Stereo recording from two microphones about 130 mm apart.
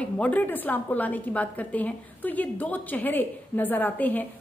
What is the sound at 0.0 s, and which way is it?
A woman's voice, 10° left (ahead or behind).